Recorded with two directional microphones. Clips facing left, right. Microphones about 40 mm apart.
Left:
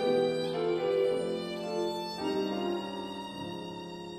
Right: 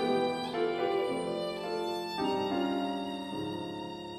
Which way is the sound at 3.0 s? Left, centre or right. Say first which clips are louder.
Right 2 dB; right.